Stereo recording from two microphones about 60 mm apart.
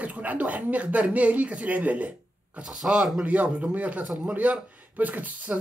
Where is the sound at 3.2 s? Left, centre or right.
Right.